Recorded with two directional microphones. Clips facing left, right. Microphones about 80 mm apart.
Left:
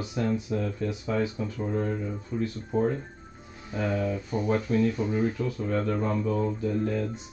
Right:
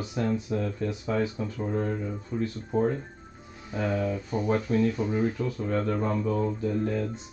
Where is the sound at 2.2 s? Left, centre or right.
Right.